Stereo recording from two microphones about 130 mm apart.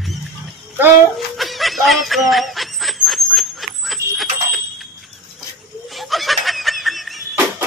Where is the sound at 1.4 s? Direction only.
Centre (ahead or behind).